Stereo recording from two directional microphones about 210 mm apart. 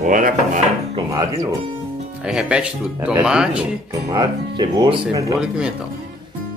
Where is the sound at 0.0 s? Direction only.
40° right (ahead or behind).